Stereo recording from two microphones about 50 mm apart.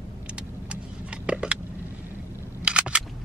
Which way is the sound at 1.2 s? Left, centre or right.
Right.